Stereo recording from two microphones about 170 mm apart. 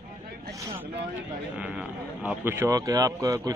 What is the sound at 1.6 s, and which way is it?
Speech, 5° right (ahead or behind).